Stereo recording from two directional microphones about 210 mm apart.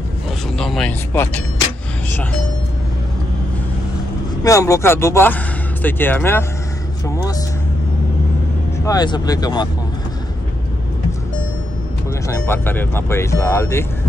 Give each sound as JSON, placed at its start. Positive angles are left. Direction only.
{"t": 0.6, "sound": "speech", "side_deg": 0}
{"t": 4.4, "sound": "speech", "side_deg": 15}
{"t": 7.1, "sound": "music", "side_deg": 15}
{"t": 8.8, "sound": "speech", "side_deg": 20}
{"t": 12.3, "sound": "speech", "side_deg": 10}